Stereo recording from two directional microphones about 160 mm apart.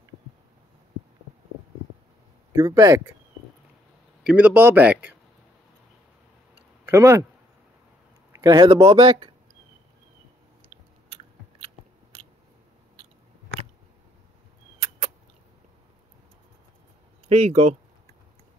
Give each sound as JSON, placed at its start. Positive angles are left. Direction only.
{"t": 2.5, "sound": "speech", "side_deg": -20}
{"t": 4.2, "sound": "a man's voice", "side_deg": -10}
{"t": 6.9, "sound": "speech", "side_deg": -15}
{"t": 8.4, "sound": "speech", "side_deg": -25}
{"t": 10.7, "sound": "biting", "side_deg": -35}
{"t": 17.3, "sound": "speech", "side_deg": -40}